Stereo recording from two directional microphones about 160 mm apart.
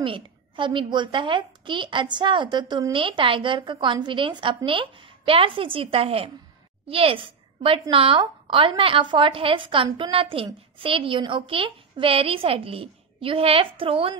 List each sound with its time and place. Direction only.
0.0 s a woman's voice: 30° right (ahead or behind)